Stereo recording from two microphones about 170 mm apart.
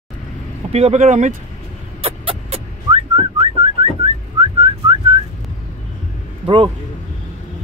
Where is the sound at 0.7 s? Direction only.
40° right (ahead or behind).